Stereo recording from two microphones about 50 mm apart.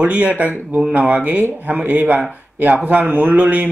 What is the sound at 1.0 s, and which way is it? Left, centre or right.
A man's voice, right.